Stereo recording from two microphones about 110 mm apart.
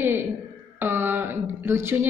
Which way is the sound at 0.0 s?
20° right (ahead or behind).